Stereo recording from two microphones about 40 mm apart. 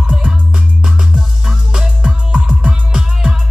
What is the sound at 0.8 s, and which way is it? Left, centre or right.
Music, centre.